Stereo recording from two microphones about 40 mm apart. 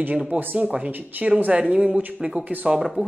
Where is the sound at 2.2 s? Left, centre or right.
Right.